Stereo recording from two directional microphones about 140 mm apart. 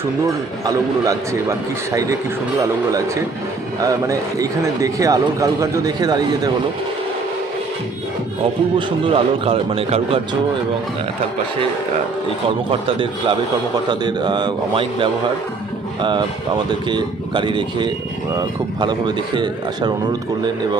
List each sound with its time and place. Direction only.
0.7 s speech: 25° right (ahead or behind)
3.8 s speech: 25° right (ahead or behind)
8.7 s speech: 40° right (ahead or behind)
12.8 s speech: 40° right (ahead or behind)